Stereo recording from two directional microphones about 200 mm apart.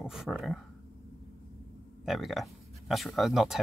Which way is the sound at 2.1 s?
Centre (ahead or behind).